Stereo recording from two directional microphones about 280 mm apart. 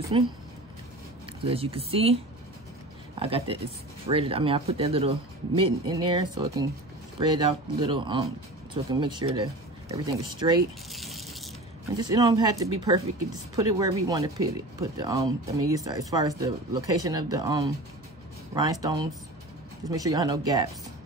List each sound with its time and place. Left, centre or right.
0.1 s speech: centre
1.4 s speech: centre
3.2 s speech: centre
10.9 s a sound: centre
12.0 s speech: centre